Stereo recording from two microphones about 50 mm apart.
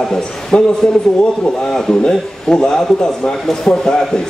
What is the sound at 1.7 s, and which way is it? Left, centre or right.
A man's voice, centre.